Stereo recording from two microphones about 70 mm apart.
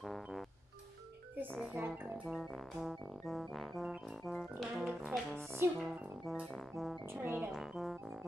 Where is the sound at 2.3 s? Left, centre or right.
Centre.